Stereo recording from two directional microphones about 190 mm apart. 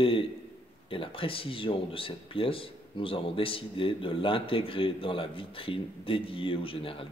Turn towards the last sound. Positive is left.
turn(degrees=30)  # may be behind; listen again after turning